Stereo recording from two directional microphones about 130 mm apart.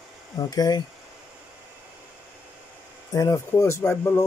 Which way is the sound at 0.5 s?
30° left (ahead or behind).